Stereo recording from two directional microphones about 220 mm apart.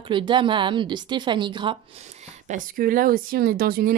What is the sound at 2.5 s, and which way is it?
Speech, 40° right (ahead or behind).